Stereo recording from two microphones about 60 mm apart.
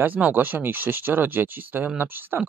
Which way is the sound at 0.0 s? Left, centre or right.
Right.